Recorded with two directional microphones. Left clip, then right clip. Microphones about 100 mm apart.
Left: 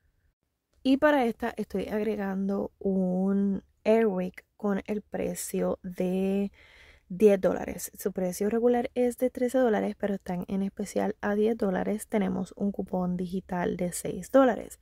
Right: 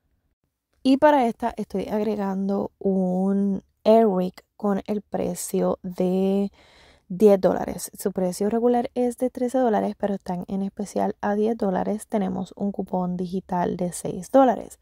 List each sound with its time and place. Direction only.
0.8 s speech: 50° right (ahead or behind); by 1.9 s 30° right (ahead or behind)
1.9 s speech: 55° right (ahead or behind)
2.9 s speech: 10° right (ahead or behind)
3.3 s a woman's voice: 20° right (ahead or behind)
3.8 s a woman's voice: 55° right (ahead or behind); by 14.7 s 30° right (ahead or behind)